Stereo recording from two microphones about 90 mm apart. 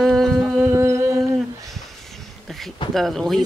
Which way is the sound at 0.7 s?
30° right (ahead or behind).